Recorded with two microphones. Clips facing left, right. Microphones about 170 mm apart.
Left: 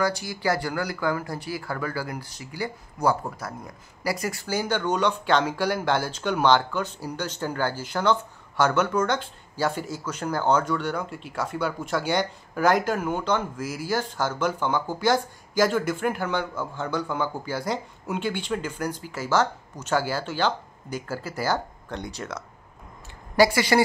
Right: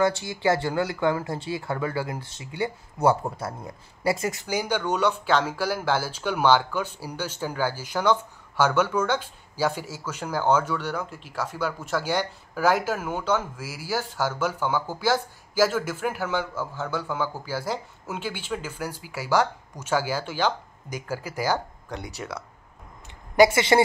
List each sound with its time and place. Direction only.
0.0 s speech: 25° right (ahead or behind)
23.3 s speech: 20° right (ahead or behind)